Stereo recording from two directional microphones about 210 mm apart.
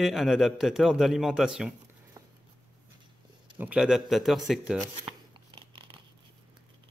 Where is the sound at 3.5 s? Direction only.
5° right (ahead or behind).